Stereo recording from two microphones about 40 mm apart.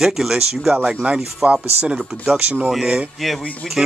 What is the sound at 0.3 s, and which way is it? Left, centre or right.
Speech, right.